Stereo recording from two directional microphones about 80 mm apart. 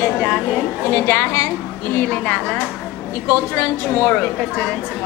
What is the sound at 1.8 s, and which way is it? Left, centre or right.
Speech, centre.